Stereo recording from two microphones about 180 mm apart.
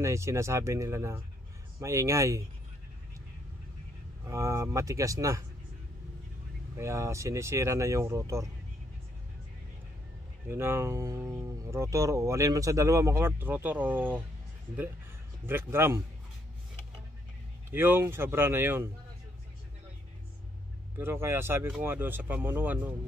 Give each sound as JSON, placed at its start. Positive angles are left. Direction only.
{"t": 0.0, "sound": "speech", "side_deg": -15}
{"t": 4.3, "sound": "speech", "side_deg": -15}
{"t": 6.8, "sound": "speech", "side_deg": -15}
{"t": 10.5, "sound": "speech", "side_deg": -15}
{"t": 15.4, "sound": "speech", "side_deg": -15}
{"t": 17.6, "sound": "speech", "side_deg": -10}
{"t": 21.0, "sound": "speech", "side_deg": -15}